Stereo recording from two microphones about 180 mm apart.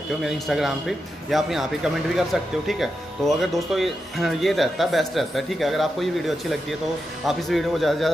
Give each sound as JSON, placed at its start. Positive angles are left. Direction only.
{"t": 0.2, "sound": "speech", "side_deg": 0}